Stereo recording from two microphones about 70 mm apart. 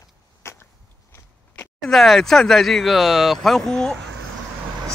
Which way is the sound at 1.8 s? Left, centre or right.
Centre.